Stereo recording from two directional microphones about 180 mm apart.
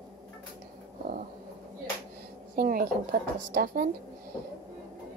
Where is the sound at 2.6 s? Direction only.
55° right (ahead or behind).